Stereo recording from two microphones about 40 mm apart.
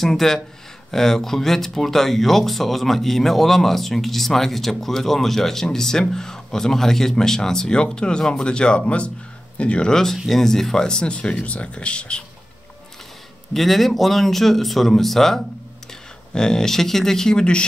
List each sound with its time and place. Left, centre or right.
0.0 s speech: centre; by 9.8 s left
9.8 s speech: centre
13.5 s speech: centre